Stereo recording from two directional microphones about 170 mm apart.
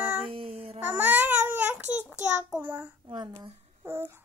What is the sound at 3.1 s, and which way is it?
Speech, 25° right (ahead or behind).